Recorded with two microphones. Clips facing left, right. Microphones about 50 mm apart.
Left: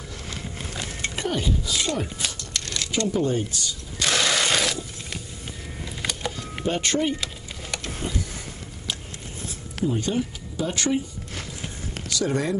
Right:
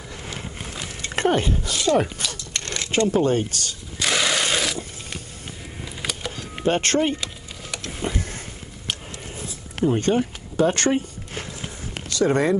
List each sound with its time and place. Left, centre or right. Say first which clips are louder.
1.1 s speech: right 7 dB; right
2.5 s a sound: right 1 dB; right
3.1 s speech: right 2 dB; right
4.0 s mechanisms: right 1 dB; centre
6.0 s a sound: even; centre
6.6 s speech: right 4 dB; right
8.0 s a sound: right 5 dB; right
9.8 s speech: right 5 dB; right
12.1 s speech: right 6 dB; right